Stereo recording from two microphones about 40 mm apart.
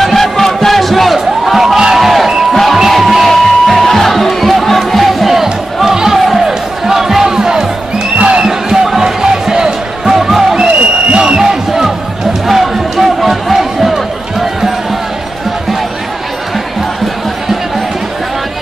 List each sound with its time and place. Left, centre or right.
0.0 s crowd: centre
1.8 s a sound: centre
2.5 s music: centre
6.1 s music: centre
6.4 s music: centre
8.2 s music: right
8.5 s music: centre